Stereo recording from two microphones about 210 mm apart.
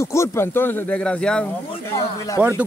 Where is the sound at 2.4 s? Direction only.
5° right (ahead or behind).